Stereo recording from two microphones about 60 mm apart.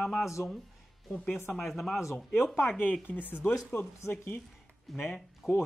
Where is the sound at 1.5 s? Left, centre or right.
Centre.